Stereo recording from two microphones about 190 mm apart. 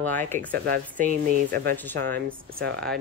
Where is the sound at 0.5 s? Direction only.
50° right (ahead or behind).